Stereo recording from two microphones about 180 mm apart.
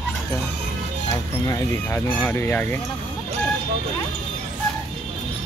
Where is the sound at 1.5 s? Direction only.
10° left (ahead or behind).